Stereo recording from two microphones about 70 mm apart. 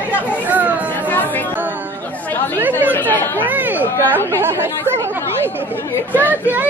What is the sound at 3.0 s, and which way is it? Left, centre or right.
Speech, left.